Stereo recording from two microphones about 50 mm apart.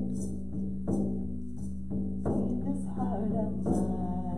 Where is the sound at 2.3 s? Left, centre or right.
Centre.